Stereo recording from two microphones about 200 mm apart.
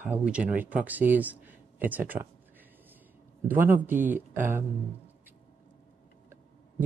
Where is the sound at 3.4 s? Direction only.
10° right (ahead or behind).